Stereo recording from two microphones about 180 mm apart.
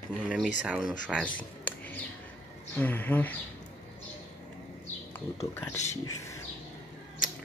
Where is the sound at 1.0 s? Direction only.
5° left (ahead or behind).